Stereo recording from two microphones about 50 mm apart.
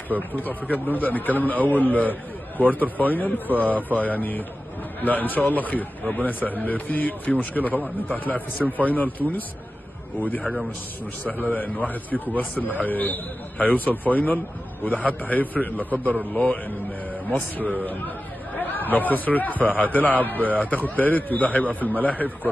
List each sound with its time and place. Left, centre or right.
0.4 s a man's voice: left
12.1 s speech: centre
12.8 s a man's voice: left